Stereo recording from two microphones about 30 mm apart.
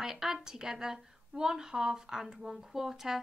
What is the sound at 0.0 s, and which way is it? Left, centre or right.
A woman's voice, centre.